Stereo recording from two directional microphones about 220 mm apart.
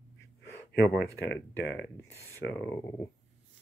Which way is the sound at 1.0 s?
55° left (ahead or behind).